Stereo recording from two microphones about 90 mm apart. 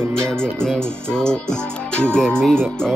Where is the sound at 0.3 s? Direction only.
5° left (ahead or behind).